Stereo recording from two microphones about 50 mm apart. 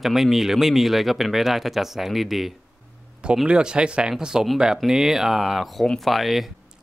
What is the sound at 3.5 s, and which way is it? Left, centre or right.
Speech, centre.